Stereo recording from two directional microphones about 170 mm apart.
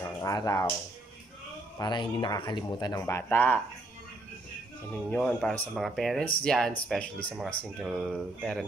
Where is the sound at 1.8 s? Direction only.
25° left (ahead or behind).